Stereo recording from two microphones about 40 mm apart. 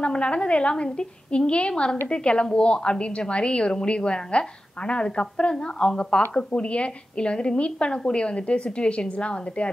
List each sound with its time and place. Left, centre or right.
0.0 s a woman's voice: left